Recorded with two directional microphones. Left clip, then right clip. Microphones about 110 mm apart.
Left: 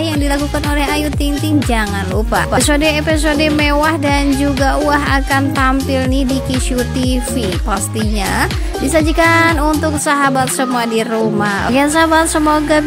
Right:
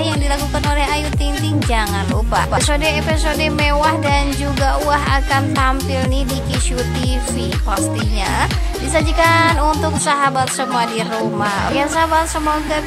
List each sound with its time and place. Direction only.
2.3 s a woman's voice: 30° left (ahead or behind)
8.9 s a woman's voice: 30° left (ahead or behind)
11.7 s speech: 45° left (ahead or behind)